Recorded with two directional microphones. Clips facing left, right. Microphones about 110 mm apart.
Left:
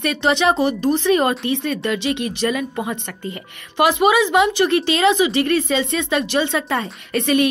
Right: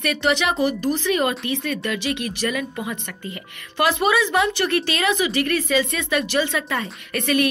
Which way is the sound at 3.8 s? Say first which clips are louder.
Left 4 dB; 15° left (ahead or behind).